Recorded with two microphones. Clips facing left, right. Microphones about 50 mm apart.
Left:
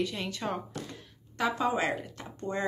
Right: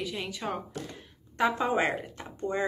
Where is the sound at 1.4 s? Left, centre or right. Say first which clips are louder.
Right 2 dB; right.